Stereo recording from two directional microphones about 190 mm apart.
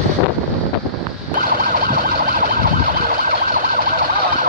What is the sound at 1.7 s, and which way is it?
Emergency vehicle, 50° right (ahead or behind).